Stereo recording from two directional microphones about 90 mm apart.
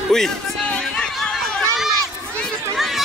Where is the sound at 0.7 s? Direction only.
5° left (ahead or behind).